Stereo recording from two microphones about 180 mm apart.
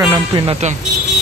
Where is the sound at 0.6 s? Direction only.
40° right (ahead or behind).